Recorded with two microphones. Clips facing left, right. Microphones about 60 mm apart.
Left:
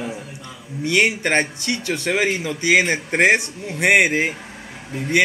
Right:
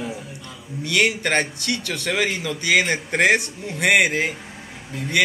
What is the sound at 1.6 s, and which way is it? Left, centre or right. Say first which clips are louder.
Speech: left 2 dB; left.